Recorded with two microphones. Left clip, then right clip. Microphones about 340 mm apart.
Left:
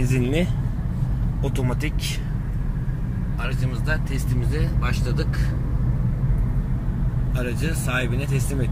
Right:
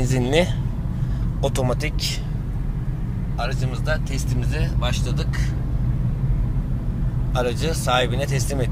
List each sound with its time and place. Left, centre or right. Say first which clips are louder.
0.2 s speech: right 7 dB; right
7.4 s speech: right 2 dB; right